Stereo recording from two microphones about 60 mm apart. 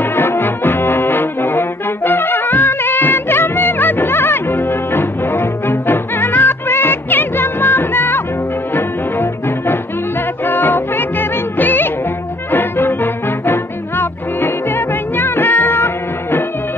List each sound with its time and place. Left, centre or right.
0.0 s brass instrument: left
8.7 s music: left
15.1 s cat: left